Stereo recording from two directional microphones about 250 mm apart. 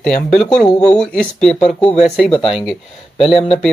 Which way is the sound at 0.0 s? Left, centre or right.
Centre.